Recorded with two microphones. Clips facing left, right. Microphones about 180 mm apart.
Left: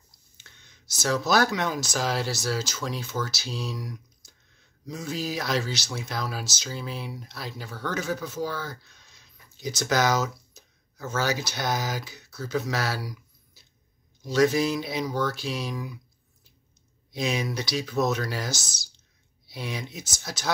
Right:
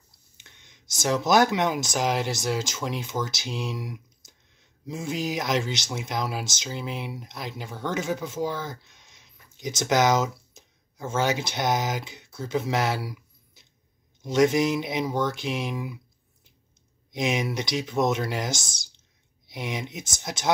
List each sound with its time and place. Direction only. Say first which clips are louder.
0.4 s speech: right 1 dB; 20° right (ahead or behind)
17.1 s speech: right 2 dB; 20° right (ahead or behind)